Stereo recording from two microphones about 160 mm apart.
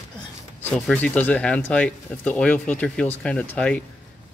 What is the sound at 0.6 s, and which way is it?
Speech, 10° left (ahead or behind).